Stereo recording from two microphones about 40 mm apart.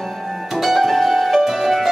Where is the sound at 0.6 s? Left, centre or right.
Centre.